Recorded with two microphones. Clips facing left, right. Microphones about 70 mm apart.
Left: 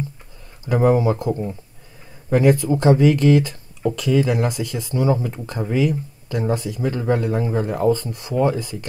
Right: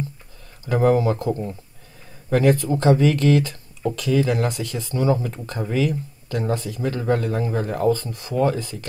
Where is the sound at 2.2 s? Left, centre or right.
Centre.